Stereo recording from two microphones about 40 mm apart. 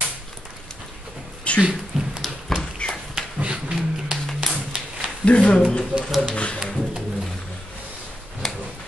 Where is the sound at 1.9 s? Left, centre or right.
Centre.